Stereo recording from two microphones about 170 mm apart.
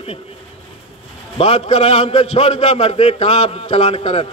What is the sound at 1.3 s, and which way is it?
A man's voice, 35° left (ahead or behind).